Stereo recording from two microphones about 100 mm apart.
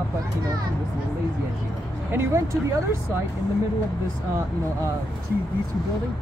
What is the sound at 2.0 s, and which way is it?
Speech, 25° right (ahead or behind).